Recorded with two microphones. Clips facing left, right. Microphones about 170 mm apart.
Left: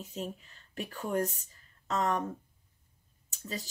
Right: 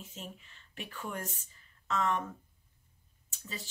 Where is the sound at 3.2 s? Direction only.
40° left (ahead or behind).